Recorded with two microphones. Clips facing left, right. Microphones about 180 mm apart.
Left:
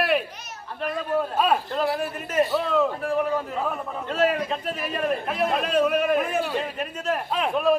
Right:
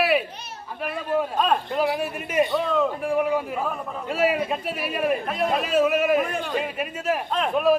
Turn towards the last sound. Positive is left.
turn(degrees=0)  # may be behind; listen again after turning